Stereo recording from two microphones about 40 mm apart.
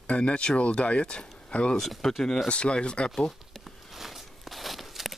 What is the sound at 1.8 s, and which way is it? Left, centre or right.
Speech, centre.